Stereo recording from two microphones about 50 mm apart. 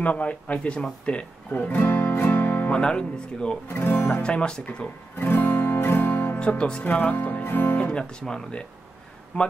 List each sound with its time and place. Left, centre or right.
0.0 s speech: left
1.5 s speech: left
1.8 s music: left
2.7 s speech: centre
3.6 s speech: left
4.1 s speech: left
4.8 s guitar: left
6.8 s speech: left
7.2 s speech: left
8.0 s speech: centre